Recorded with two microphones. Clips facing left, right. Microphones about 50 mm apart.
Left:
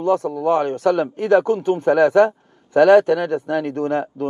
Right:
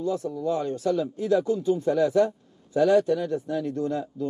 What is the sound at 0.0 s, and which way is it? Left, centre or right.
Speech, left.